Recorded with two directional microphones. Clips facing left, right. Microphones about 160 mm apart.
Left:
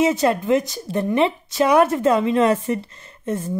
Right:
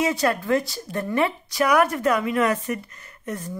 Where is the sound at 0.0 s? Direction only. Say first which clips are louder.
Left 4 dB; 20° left (ahead or behind).